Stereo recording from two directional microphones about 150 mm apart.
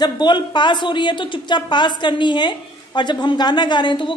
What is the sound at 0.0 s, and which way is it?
Speech, 30° left (ahead or behind).